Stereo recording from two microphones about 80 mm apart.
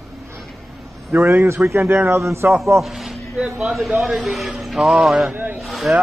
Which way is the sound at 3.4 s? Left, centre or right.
Centre.